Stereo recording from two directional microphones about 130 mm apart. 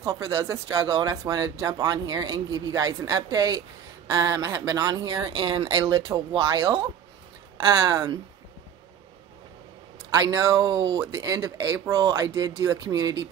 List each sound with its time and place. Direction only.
0.0 s speech: 25° right (ahead or behind)
10.2 s speech: 25° right (ahead or behind)